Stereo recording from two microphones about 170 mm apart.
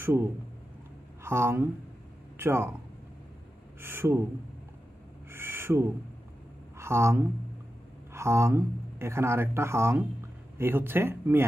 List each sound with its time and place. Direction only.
0.0 s speech: 15° right (ahead or behind)
3.8 s speech: 15° right (ahead or behind)
5.3 s owl: 15° right (ahead or behind)
6.8 s speech: 15° right (ahead or behind)